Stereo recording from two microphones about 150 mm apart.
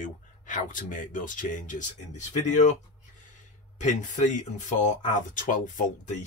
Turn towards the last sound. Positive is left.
turn(degrees=60)  # may be behind; listen again after turning